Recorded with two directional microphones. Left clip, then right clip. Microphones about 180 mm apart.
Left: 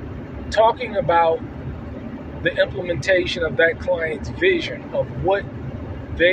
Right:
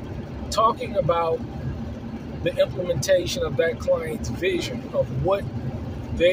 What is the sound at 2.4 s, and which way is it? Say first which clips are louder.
Speech: left 3 dB; 10° right (ahead or behind).